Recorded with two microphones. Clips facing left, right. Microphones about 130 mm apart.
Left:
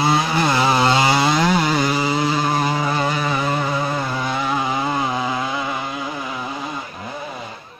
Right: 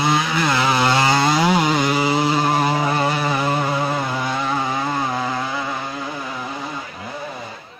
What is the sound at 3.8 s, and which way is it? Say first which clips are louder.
Vehicle: right 1 dB; 10° right (ahead or behind).